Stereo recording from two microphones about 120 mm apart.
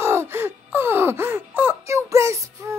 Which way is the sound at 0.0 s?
20° right (ahead or behind).